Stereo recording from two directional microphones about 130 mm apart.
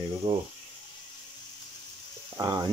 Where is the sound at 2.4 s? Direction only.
30° right (ahead or behind).